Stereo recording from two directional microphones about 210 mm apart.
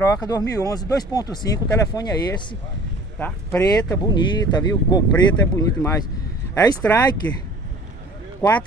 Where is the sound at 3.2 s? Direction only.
10° left (ahead or behind).